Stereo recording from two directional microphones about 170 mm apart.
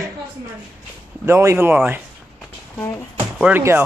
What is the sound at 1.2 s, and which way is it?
Speech, 15° right (ahead or behind).